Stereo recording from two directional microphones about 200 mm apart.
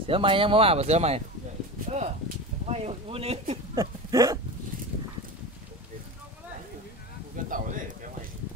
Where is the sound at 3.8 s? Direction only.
15° right (ahead or behind).